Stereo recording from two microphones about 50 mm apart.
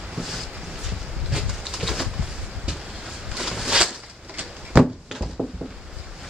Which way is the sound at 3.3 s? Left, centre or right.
Centre.